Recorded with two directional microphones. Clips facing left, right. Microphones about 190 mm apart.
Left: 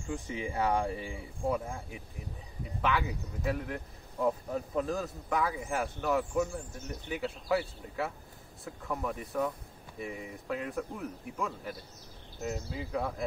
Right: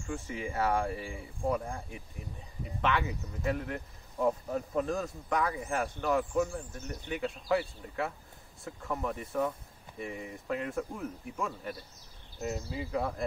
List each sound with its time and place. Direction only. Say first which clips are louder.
0.1 s speech: left 1 dB; 15° left (ahead or behind)
1.5 s speech: right 1 dB; 5° left (ahead or behind)